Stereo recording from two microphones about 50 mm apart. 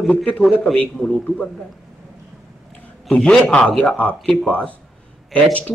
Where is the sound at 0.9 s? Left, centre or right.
Centre.